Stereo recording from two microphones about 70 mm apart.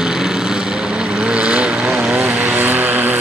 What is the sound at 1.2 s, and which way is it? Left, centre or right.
Vehicle, centre.